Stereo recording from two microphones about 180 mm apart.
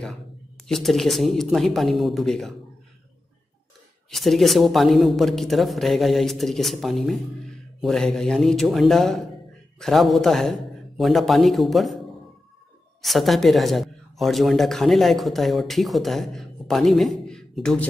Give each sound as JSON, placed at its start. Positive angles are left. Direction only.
{"t": 0.7, "sound": "speech", "side_deg": 0}
{"t": 4.1, "sound": "speech", "side_deg": 0}
{"t": 13.0, "sound": "speech", "side_deg": 0}